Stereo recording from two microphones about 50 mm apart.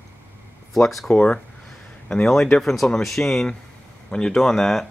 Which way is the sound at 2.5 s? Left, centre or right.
Centre.